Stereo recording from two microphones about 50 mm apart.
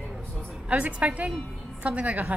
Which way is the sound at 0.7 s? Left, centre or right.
Right.